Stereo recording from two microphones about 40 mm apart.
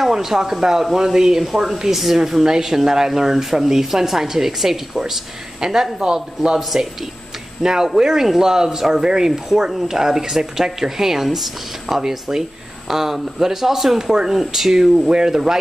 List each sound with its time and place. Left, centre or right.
0.0 s speech: centre
1.5 s speech: centre
7.6 s speech: centre